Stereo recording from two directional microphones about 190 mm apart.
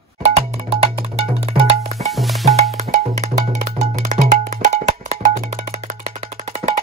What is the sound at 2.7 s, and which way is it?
Music, 35° right (ahead or behind).